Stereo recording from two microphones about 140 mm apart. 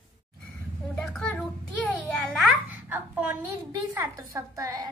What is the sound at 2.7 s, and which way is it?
Speech, 10° right (ahead or behind).